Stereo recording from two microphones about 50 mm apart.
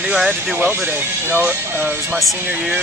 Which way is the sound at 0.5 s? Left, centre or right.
Right.